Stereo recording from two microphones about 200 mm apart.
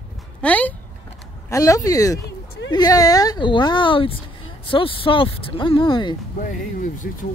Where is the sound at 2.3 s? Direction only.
55° left (ahead or behind).